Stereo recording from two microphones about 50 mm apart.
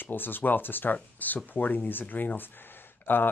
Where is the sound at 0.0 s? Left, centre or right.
Left.